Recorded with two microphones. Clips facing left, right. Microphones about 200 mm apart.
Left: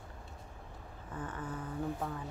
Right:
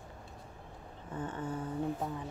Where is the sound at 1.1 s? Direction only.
25° right (ahead or behind).